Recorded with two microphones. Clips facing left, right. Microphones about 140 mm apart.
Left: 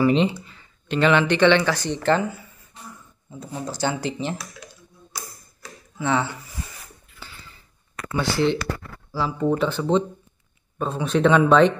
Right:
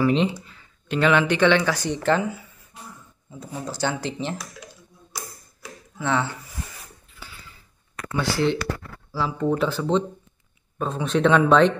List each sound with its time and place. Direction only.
0.0 s speech: centre (ahead or behind)
5.9 s speech: 5° left (ahead or behind)
7.2 s a sound: 10° right (ahead or behind)
7.9 s speech: centre (ahead or behind)